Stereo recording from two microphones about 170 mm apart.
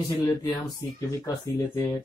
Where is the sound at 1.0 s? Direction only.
20° left (ahead or behind).